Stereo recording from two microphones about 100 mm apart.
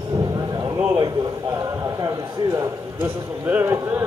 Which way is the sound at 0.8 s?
40° right (ahead or behind).